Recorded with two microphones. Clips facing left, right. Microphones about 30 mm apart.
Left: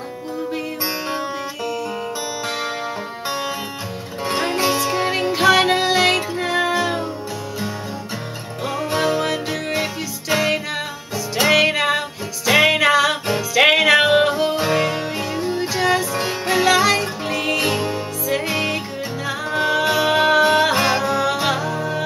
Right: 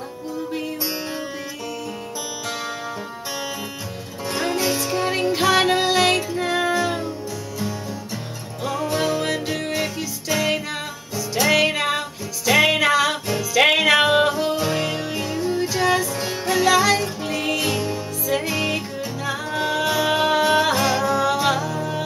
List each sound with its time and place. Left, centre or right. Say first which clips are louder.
3.3 s music: left 5 dB; left
4.3 s music: left 3 dB; left
5.3 s music: left 3 dB; centre; by 7.1 s left
8.8 s music: left 3 dB; left
11.5 s music: left 4 dB; centre
14.5 s music: left 3 dB; left
15.7 s music: left 2 dB; centre
16.1 s music: left 3 dB; left
16.6 s music: left 1 dB; centre
19.2 s music: left 3 dB; centre
20.7 s music: left 2 dB; left